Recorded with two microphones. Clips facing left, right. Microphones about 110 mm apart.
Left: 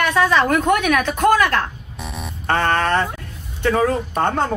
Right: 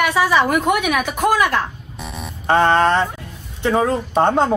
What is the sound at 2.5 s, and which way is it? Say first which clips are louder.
Speech: right 4 dB; 15° right (ahead or behind).